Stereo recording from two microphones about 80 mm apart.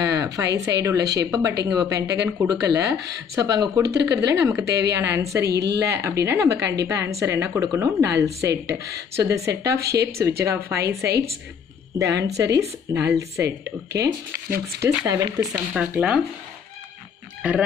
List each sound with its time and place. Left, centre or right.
0.0 s a woman's voice: right
12.0 s a woman's voice: right
15.9 s speech: centre
17.4 s speech: centre